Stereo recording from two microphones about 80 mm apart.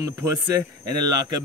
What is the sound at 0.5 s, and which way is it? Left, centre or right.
Speech, right.